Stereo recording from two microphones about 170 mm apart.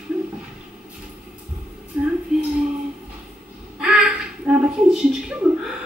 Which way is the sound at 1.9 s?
10° right (ahead or behind).